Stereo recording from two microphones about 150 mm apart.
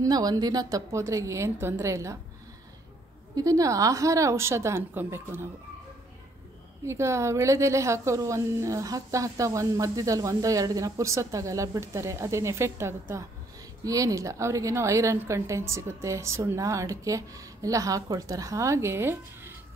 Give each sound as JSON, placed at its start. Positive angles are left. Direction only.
{"t": 0.0, "sound": "a woman's voice", "side_deg": -25}
{"t": 3.3, "sound": "a woman's voice", "side_deg": -20}
{"t": 6.9, "sound": "a woman's voice", "side_deg": -20}